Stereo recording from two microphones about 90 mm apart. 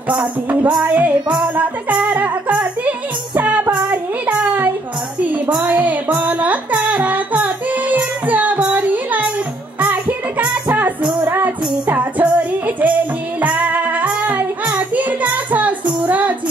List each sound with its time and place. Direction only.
0.1 s music: 15° right (ahead or behind)
3.3 s child singing: 20° right (ahead or behind)
5.2 s music: 20° right (ahead or behind)